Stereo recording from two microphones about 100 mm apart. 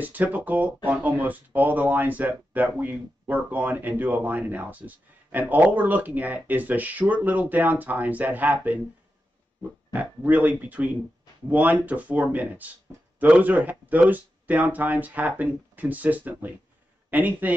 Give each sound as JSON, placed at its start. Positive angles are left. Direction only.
{"t": 0.0, "sound": "speech", "side_deg": -15}
{"t": 9.9, "sound": "speech", "side_deg": -15}